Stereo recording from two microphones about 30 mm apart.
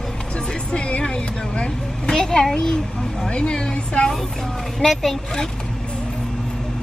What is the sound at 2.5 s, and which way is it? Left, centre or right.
Speech, left.